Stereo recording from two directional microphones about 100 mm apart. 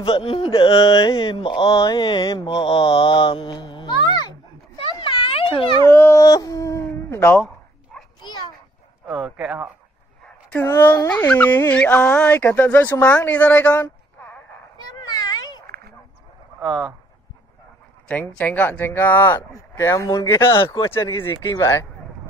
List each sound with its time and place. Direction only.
0.0 s speech: 60° left (ahead or behind)
1.7 s speech: 35° left (ahead or behind)
2.0 s mantra: 50° left (ahead or behind)
4.1 s a sound: 45° left (ahead or behind)
4.9 s a sound: 60° left (ahead or behind)
5.9 s dog: 25° left (ahead or behind)
6.2 s dog: 40° left (ahead or behind); by 7.3 s 25° left (ahead or behind)
9.0 s speech: 10° right (ahead or behind)
10.6 s speech: 25° left (ahead or behind)
11.1 s speech: 15° left (ahead or behind)
13.7 s a sound: 20° left (ahead or behind)
15.0 s a sound: 40° left (ahead or behind)
18.4 s speech: 15° left (ahead or behind)